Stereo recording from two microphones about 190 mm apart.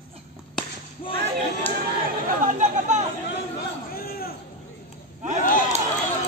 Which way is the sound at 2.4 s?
40° right (ahead or behind).